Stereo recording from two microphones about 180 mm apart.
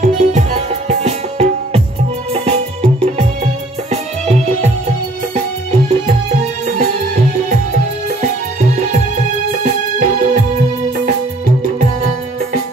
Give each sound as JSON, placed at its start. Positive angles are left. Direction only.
{"t": 0.0, "sound": "music", "side_deg": -40}
{"t": 9.6, "sound": "music", "side_deg": -45}